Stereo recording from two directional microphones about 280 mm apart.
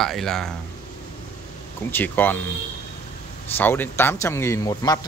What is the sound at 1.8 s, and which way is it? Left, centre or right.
Speech, centre.